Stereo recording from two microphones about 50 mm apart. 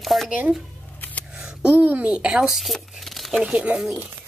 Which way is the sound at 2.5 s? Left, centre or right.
Centre.